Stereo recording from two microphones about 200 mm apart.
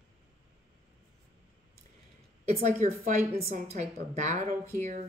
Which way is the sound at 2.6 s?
40° right (ahead or behind).